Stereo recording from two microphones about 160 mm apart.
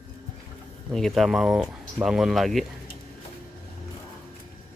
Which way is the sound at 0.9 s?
Centre (ahead or behind).